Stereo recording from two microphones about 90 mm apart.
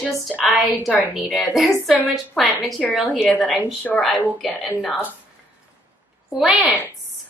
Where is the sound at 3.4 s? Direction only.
15° left (ahead or behind).